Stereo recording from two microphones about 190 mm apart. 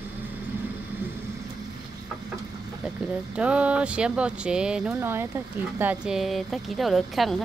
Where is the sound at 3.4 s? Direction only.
5° right (ahead or behind).